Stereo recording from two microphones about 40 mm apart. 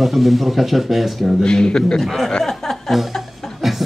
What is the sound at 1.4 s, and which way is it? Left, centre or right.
Speech, centre.